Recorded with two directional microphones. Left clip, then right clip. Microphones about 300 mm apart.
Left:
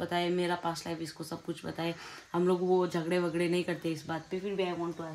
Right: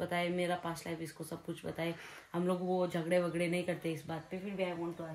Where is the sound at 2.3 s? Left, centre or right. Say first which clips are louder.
Left 7 dB; centre.